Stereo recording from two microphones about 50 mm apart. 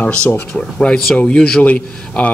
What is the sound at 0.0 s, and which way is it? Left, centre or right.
Speech, left.